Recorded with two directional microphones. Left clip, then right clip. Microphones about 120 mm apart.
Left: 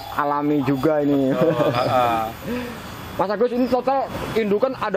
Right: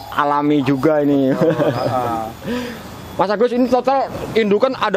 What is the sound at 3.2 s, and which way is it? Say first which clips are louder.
Speech: right 4 dB; 35° right (ahead or behind).